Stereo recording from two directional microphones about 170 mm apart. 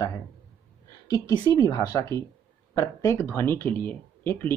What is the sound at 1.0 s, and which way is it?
A woman's voice, 20° left (ahead or behind).